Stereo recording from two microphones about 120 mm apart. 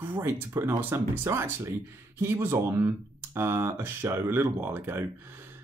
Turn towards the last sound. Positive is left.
turn(degrees=-20)  # may be behind; listen again after turning